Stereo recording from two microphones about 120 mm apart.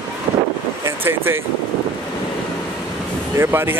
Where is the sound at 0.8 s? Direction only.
20° right (ahead or behind).